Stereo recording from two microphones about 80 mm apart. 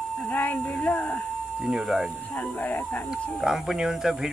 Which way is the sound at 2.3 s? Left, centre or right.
Left.